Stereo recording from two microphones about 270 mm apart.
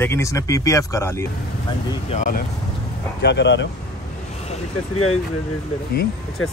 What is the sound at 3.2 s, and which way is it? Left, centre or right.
Speech, left.